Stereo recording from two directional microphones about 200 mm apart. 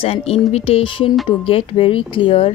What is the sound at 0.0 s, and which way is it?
Speech, 30° left (ahead or behind).